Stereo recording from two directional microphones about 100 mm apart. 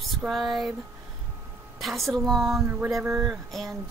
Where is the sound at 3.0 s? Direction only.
25° right (ahead or behind).